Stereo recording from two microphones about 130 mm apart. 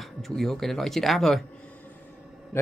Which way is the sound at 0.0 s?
Centre (ahead or behind).